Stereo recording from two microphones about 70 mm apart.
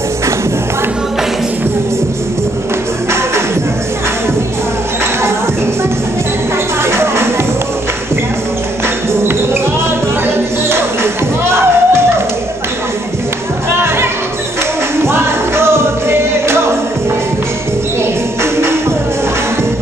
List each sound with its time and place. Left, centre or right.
6.8 s music: right
11.4 s music: right
15.0 s music: right
18.4 s music: right